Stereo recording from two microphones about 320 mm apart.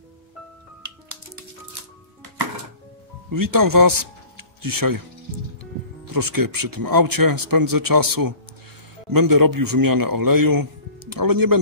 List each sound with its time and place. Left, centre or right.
3.3 s speech: right
6.1 s a man's voice: right